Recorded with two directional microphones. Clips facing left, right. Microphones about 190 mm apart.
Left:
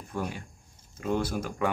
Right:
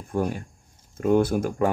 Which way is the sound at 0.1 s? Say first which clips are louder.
Right 8 dB; 45° right (ahead or behind).